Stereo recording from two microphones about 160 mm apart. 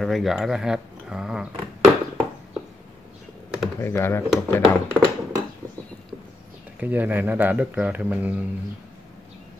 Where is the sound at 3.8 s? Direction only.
15° left (ahead or behind).